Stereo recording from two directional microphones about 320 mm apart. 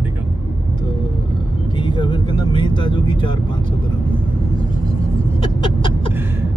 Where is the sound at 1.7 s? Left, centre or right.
Centre.